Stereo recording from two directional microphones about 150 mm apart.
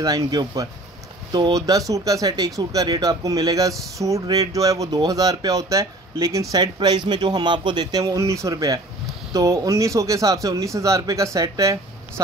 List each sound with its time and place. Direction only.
0.0 s a man's voice: 25° right (ahead or behind)